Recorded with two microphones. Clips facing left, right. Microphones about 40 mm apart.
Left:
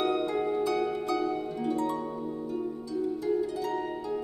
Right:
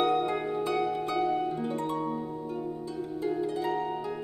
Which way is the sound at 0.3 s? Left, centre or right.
Right.